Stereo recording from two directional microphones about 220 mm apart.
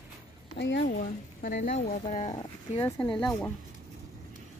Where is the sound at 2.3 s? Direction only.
20° left (ahead or behind).